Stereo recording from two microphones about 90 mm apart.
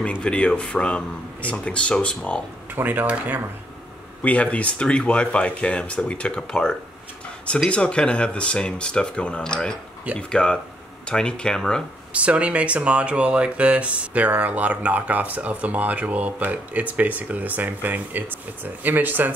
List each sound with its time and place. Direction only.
0.0 s speech: 15° left (ahead or behind)
2.7 s speech: 20° right (ahead or behind)
4.2 s speech: 15° left (ahead or behind)
12.1 s speech: 15° right (ahead or behind)